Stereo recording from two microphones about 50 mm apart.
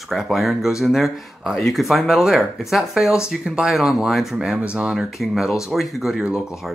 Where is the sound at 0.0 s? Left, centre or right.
Centre.